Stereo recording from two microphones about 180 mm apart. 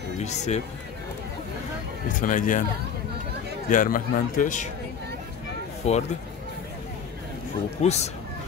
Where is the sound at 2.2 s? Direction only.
45° left (ahead or behind).